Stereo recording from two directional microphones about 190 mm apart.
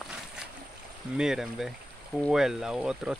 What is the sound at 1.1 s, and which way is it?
Speech, 5° right (ahead or behind).